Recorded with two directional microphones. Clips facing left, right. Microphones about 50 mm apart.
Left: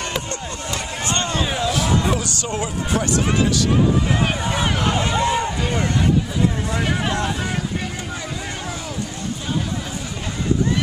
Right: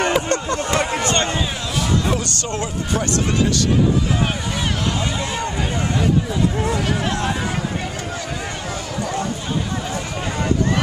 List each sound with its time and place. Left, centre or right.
0.3 s a sound: right
1.6 s music: centre
4.6 s vehicle: centre